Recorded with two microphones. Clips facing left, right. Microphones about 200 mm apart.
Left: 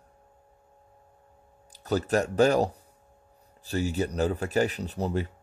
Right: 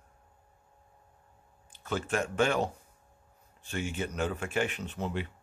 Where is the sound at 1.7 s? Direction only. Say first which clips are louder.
Left 7 dB; 40° left (ahead or behind).